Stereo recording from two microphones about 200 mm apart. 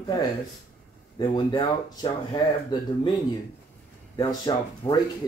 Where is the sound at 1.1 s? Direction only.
20° left (ahead or behind).